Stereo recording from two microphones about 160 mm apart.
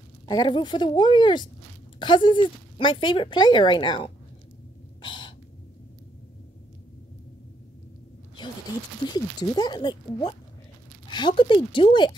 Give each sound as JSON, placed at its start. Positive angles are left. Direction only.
{"t": 0.3, "sound": "a woman's voice", "side_deg": 30}
{"t": 5.0, "sound": "a sound", "side_deg": 30}
{"t": 9.0, "sound": "a woman's voice", "side_deg": 25}